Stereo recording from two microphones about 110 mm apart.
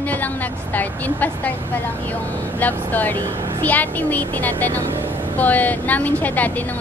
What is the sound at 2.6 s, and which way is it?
A woman's voice, 15° left (ahead or behind).